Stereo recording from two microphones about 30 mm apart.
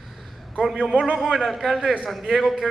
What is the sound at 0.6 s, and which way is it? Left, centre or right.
A man's voice, centre.